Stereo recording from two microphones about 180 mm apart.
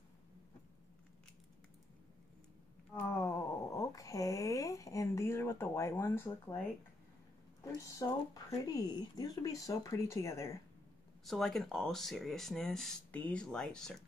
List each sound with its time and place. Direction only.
2.9 s a sound: 15° left (ahead or behind)
7.6 s speech: 20° left (ahead or behind)
11.2 s speech: centre (ahead or behind)